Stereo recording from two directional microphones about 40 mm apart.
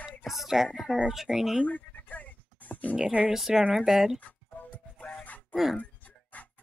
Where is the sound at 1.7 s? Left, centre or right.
Left.